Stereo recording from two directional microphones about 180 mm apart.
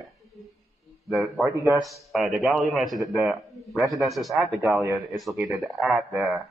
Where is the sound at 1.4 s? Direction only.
15° right (ahead or behind).